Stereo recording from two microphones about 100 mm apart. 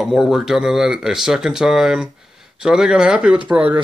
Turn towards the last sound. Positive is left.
turn(degrees=-10)  # may be behind; listen again after turning